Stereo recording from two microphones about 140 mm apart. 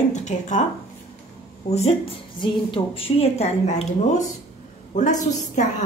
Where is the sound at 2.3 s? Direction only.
35° left (ahead or behind).